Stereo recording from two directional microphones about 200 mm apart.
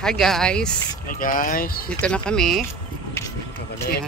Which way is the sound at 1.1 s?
45° left (ahead or behind).